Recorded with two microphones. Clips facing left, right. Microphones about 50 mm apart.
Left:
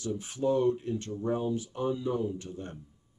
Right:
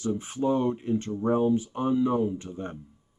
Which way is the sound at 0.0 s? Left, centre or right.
Right.